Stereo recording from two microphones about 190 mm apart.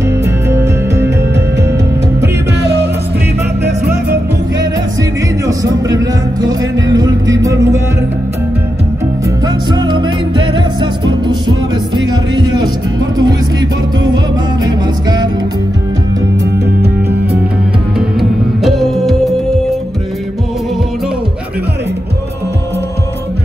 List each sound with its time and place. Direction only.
0.2 s music: 15° right (ahead or behind)
5.5 s music: 20° right (ahead or behind)
9.7 s music: 25° right (ahead or behind)
18.6 s music: centre (ahead or behind)